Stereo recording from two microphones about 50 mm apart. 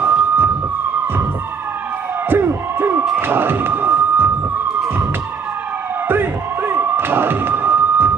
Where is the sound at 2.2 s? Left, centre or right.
Right.